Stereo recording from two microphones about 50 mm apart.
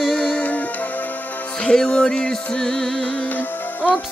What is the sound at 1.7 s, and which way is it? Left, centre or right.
Music, centre.